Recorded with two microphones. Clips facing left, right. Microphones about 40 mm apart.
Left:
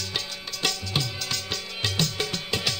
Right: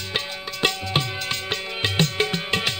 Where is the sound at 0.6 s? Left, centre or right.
Right.